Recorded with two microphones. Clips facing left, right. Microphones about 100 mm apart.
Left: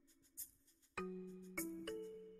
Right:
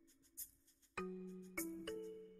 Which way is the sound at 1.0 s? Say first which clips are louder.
Even; centre (ahead or behind).